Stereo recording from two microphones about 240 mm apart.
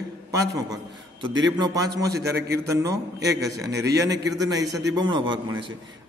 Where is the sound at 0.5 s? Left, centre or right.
Centre.